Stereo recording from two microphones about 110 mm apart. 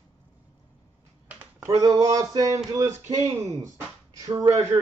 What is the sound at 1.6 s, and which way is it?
A man's voice, 30° right (ahead or behind).